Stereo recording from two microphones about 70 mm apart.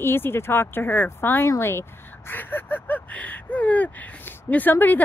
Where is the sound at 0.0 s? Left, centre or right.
Left.